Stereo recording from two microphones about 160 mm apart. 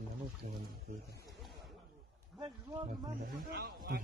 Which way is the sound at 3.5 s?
75° right (ahead or behind).